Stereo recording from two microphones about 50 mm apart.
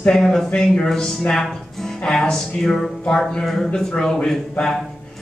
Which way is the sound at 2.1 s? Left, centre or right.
Centre.